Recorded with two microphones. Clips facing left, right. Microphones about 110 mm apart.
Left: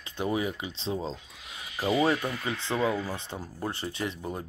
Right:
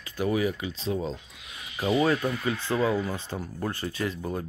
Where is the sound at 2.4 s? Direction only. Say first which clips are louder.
Right 4 dB; 20° left (ahead or behind).